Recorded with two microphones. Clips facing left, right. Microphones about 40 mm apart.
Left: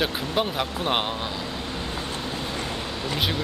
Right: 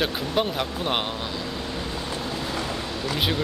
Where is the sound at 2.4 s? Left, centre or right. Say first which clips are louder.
Right 1 dB; right.